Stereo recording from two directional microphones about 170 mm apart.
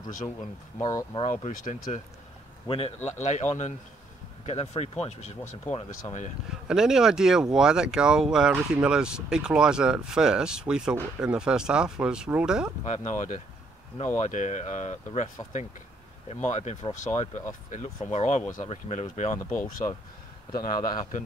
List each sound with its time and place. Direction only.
0.4 s speech: 20° left (ahead or behind)
1.2 s speech: 50° left (ahead or behind)
2.7 s speech: 35° left (ahead or behind)
6.7 s speech: 5° right (ahead or behind)
12.8 s speech: 45° left (ahead or behind)
16.4 s speech: 40° left (ahead or behind)
19.5 s speech: 15° left (ahead or behind)
20.6 s a man's voice: 55° left (ahead or behind)